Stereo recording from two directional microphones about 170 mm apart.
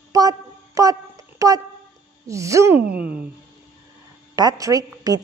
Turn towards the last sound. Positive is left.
turn(degrees=-20)  # may be behind; listen again after turning